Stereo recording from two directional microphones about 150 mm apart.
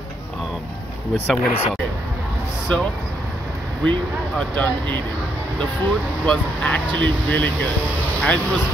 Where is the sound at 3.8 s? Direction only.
10° left (ahead or behind).